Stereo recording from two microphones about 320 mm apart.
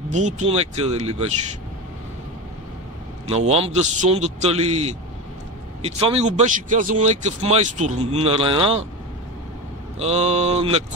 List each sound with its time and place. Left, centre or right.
0.1 s speech: right
3.3 s speech: centre
9.9 s speech: centre